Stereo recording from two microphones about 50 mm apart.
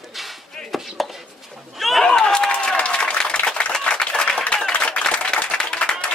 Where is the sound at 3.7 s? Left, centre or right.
Centre.